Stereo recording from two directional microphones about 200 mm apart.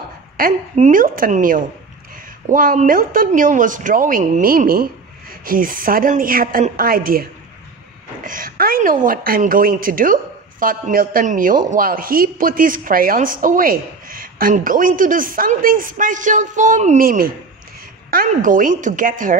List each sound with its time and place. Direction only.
0.4 s a woman's voice: 40° right (ahead or behind)